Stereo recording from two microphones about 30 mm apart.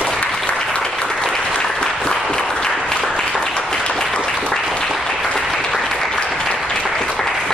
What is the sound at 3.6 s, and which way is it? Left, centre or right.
Applause, left.